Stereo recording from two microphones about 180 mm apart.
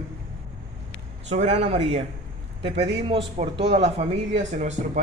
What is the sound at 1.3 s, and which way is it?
Speech, 40° right (ahead or behind).